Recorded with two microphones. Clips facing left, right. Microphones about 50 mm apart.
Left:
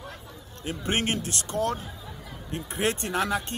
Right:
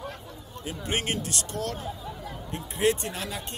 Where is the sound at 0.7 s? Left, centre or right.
Left.